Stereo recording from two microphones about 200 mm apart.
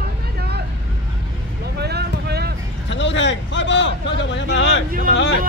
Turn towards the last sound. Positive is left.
turn(degrees=-45)  # may be behind; listen again after turning